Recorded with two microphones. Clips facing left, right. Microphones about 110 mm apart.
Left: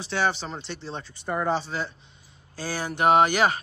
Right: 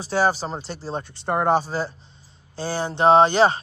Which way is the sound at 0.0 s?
40° right (ahead or behind).